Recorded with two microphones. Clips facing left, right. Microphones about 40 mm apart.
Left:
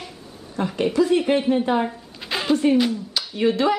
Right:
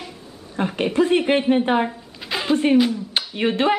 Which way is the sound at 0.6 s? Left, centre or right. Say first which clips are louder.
Even; right.